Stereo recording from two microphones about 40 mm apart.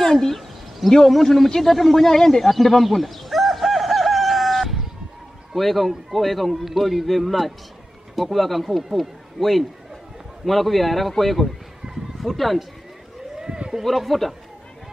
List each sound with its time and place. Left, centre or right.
0.0 s a sound: centre
5.5 s a man's voice: centre
13.4 s sheep: centre
13.8 s a man's voice: centre